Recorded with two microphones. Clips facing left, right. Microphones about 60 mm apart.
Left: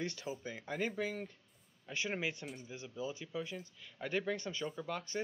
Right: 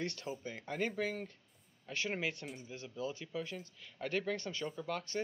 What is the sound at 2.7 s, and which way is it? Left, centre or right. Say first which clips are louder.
Speech: right 1 dB; centre.